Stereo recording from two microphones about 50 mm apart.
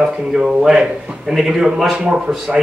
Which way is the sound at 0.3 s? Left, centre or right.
Centre.